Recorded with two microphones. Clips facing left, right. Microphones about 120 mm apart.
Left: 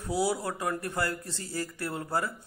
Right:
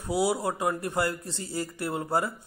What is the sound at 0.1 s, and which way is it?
A man's voice, 15° right (ahead or behind).